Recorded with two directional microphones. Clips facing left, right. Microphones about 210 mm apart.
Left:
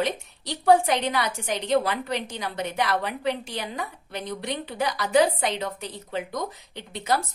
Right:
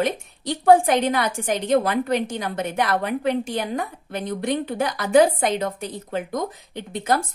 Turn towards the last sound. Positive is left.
turn(degrees=-50)  # may be behind; listen again after turning